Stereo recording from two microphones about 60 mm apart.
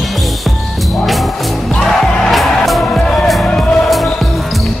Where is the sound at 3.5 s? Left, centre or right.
Centre.